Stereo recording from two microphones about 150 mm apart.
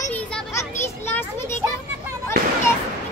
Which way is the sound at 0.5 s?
15° left (ahead or behind).